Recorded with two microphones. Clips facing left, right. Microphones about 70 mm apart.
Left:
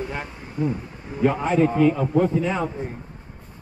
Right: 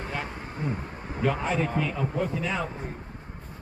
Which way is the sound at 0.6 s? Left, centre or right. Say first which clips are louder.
Left 8 dB; right.